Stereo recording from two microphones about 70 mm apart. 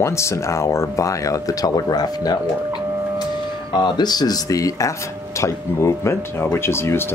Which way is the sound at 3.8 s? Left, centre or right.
Left.